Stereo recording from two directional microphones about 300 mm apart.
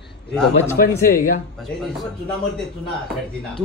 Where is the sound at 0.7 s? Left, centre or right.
Left.